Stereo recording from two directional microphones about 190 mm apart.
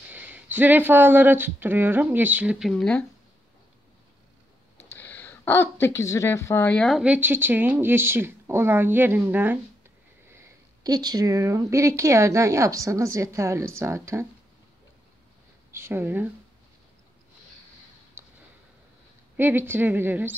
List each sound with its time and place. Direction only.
0.1 s speech: 10° right (ahead or behind)
4.9 s speech: 10° left (ahead or behind); by 14.2 s 15° right (ahead or behind)
15.7 s speech: 10° right (ahead or behind)
19.3 s speech: 10° right (ahead or behind)